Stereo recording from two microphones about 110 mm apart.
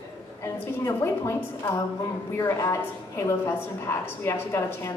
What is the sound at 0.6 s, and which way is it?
Speech, 25° left (ahead or behind).